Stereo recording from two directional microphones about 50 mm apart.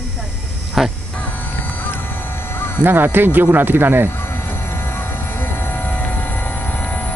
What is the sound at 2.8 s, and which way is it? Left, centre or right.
Speech, right.